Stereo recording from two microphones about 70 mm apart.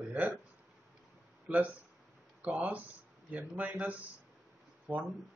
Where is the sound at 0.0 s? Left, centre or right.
Right.